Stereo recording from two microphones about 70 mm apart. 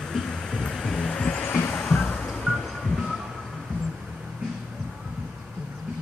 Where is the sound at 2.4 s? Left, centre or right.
Centre.